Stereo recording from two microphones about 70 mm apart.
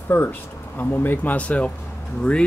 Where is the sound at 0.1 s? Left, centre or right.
Left.